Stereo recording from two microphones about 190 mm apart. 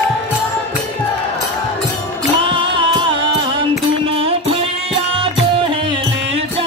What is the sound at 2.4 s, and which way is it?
Music, 25° right (ahead or behind).